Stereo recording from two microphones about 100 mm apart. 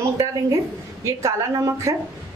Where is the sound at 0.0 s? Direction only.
35° right (ahead or behind).